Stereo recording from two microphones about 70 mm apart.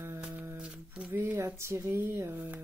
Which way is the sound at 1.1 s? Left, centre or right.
Right.